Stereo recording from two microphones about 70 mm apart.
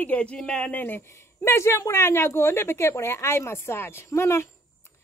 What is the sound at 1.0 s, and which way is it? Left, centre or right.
A woman's voice, left.